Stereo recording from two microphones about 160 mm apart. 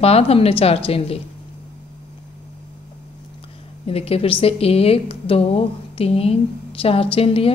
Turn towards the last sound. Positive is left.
turn(degrees=35)  # may be behind; listen again after turning